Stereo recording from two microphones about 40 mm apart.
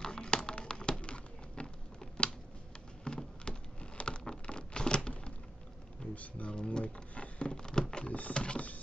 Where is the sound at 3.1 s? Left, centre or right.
Left.